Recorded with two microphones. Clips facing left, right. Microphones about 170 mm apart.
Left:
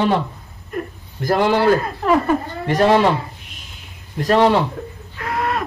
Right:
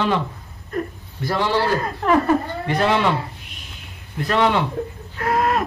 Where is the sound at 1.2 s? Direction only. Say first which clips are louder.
Left 4 dB; 45° left (ahead or behind).